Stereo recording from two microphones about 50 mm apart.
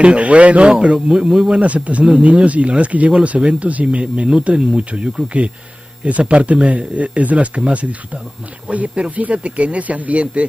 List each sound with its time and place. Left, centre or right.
0.0 s speech: right
1.6 s speech: right